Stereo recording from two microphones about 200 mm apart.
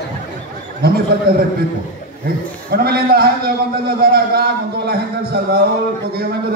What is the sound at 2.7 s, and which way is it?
A man's voice, 50° right (ahead or behind).